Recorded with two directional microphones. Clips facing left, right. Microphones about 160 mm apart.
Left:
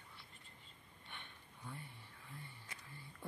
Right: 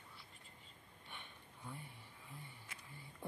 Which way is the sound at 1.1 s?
5° right (ahead or behind).